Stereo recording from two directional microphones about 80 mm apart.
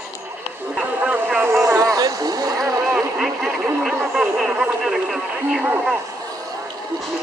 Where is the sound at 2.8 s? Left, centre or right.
Centre.